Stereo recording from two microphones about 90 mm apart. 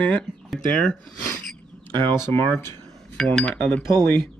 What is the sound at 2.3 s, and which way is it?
Speech, 25° left (ahead or behind).